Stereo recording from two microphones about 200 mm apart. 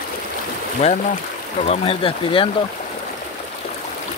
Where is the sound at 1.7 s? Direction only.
25° left (ahead or behind).